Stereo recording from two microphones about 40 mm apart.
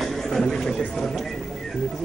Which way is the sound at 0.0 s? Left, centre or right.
Centre.